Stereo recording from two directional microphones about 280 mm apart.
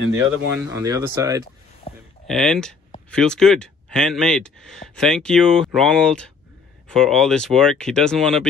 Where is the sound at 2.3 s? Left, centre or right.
Centre.